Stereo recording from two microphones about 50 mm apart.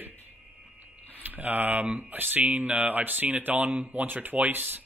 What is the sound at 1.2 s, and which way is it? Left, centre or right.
Speech, right.